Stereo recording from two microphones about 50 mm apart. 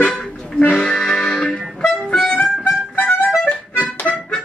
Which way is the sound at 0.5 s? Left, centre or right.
Left.